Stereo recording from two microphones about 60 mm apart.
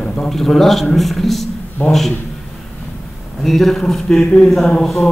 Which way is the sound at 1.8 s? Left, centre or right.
Left.